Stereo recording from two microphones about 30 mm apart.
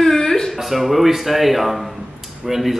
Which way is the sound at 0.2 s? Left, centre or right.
Left.